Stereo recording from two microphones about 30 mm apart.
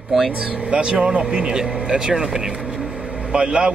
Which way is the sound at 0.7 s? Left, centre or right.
Right.